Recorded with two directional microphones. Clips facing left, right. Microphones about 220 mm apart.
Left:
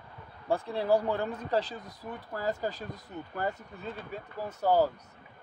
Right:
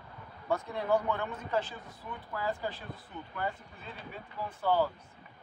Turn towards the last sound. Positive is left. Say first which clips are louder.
# left 4 dB
turn(degrees=40)  # may be behind; listen again after turning